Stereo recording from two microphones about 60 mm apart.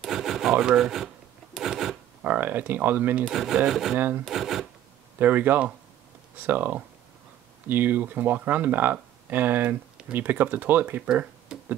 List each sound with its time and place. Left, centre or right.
0.1 s rub: centre
1.6 s filing: centre
2.2 s speech: right
3.3 s speech: centre
5.2 s speech: right
11.0 s speech: centre